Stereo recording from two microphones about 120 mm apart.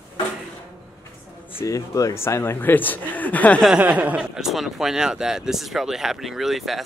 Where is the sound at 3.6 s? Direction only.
10° right (ahead or behind).